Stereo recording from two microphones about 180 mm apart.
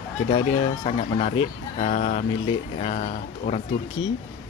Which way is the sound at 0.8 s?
35° left (ahead or behind).